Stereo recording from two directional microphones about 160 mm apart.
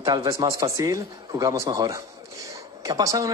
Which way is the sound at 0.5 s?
20° right (ahead or behind).